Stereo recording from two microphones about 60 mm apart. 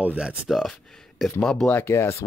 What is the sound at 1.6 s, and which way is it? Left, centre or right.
Speech, left.